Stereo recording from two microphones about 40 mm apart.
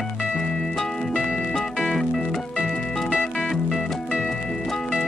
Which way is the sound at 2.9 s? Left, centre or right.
Centre.